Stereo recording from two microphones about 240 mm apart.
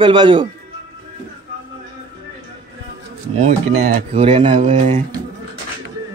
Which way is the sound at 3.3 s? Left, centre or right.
Right.